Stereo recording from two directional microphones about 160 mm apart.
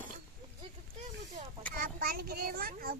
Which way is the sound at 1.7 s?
65° right (ahead or behind).